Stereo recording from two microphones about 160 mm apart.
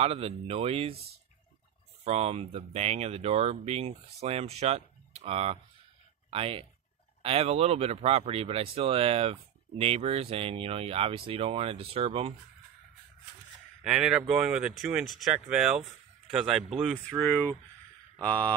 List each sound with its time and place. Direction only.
0.0 s speech: 35° right (ahead or behind)
2.0 s speech: 40° right (ahead or behind)
13.8 s speech: 5° right (ahead or behind)
17.2 s speech: 10° left (ahead or behind)